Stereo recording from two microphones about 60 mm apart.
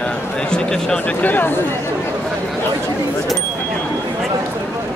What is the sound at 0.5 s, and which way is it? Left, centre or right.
Speech, centre.